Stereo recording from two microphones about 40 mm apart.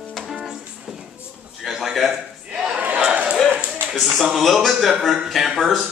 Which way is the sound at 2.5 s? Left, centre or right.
Right.